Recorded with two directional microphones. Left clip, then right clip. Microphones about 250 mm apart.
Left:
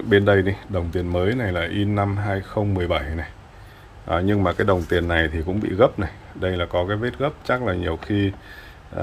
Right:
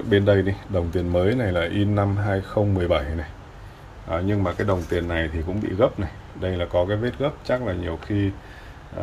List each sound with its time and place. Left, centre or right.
0.1 s speech: centre
4.1 s speech: left